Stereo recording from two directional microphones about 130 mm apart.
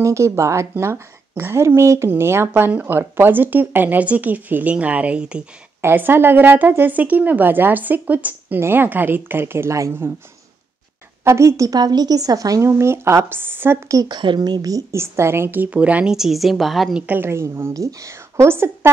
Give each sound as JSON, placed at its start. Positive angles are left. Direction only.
{"t": 0.0, "sound": "speech", "side_deg": -20}
{"t": 11.2, "sound": "a woman's voice", "side_deg": -20}
{"t": 17.0, "sound": "a woman's voice", "side_deg": -15}